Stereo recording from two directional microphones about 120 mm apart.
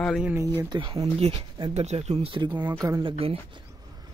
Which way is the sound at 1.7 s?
60° right (ahead or behind).